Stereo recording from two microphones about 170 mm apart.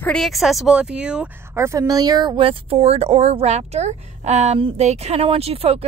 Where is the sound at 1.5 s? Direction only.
15° right (ahead or behind).